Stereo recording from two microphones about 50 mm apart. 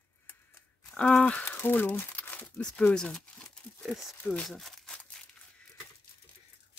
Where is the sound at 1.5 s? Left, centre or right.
Left.